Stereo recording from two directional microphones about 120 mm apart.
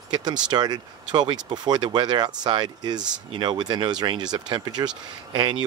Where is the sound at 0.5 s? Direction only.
35° right (ahead or behind).